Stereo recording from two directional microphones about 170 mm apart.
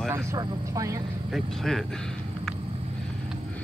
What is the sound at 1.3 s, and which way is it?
Speech, centre (ahead or behind).